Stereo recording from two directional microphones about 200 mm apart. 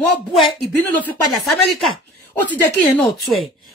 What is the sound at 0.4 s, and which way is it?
A woman's voice, 10° left (ahead or behind).